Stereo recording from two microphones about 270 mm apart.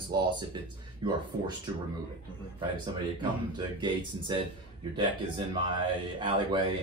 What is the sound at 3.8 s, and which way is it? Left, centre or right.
Speech, centre.